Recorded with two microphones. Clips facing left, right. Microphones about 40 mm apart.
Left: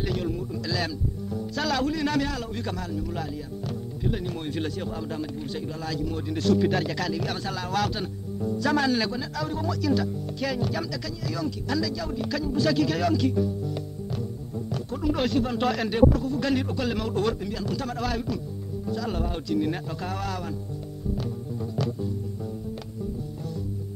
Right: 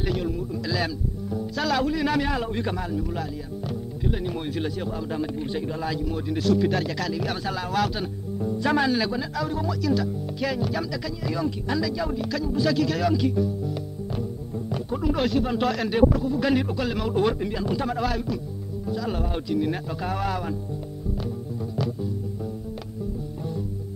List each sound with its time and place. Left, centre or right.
0.0 s speech: centre
2.2 s speech: right
4.2 s speech: centre
5.2 s speech: right
6.0 s speech: centre
8.9 s speech: centre
11.2 s speech: centre
12.2 s speech: centre
13.1 s music: centre
15.1 s speech: centre
17.1 s speech: centre